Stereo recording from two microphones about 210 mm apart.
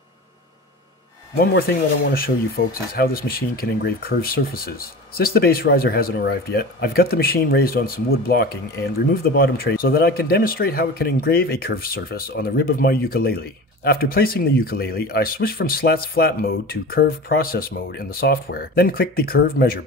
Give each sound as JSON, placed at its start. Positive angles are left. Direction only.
{"t": 1.4, "sound": "speech", "side_deg": 45}